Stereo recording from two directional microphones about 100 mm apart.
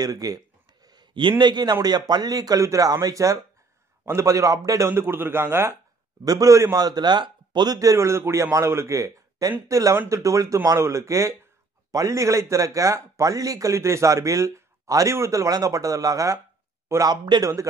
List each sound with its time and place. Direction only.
0.0 s a man's voice: 35° right (ahead or behind)
0.8 s a sound: 50° right (ahead or behind)
1.4 s a man's voice: 45° right (ahead or behind); by 5.8 s 25° right (ahead or behind)
6.2 s a man's voice: 35° right (ahead or behind)